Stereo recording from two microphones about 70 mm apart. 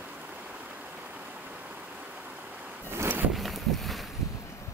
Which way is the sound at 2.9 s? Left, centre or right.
Right.